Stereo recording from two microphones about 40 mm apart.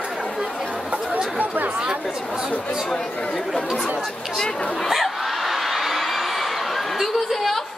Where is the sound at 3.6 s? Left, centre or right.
Centre.